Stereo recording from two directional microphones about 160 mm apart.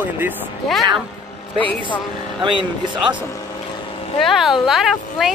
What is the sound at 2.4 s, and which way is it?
Speech, 30° right (ahead or behind).